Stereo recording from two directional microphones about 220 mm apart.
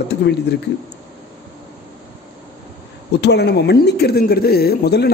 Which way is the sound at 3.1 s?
50° left (ahead or behind).